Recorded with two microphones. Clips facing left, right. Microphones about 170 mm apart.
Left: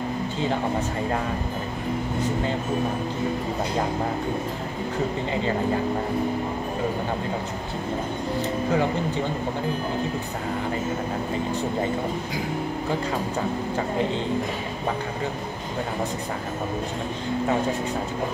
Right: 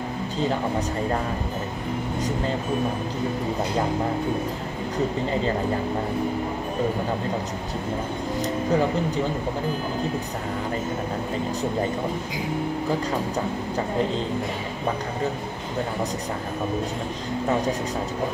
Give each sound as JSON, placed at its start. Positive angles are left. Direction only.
{"t": 8.4, "sound": "speech", "side_deg": -35}